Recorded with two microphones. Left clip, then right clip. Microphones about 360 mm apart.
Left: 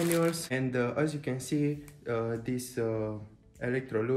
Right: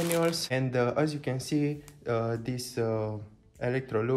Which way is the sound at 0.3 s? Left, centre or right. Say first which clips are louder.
Right 2 dB; right.